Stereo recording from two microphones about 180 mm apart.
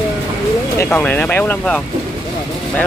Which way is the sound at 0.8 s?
10° left (ahead or behind).